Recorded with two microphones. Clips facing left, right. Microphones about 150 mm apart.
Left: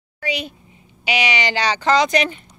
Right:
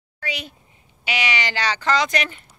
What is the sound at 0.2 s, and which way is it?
Speech, 20° left (ahead or behind).